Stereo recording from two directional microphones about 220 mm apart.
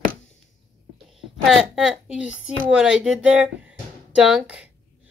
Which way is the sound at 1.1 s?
Centre (ahead or behind).